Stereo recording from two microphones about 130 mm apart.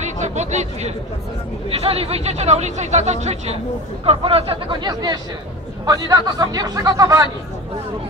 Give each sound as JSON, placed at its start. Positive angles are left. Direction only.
{"t": 0.0, "sound": "speech", "side_deg": -65}
{"t": 1.7, "sound": "speech", "side_deg": -50}
{"t": 4.0, "sound": "speech", "side_deg": -45}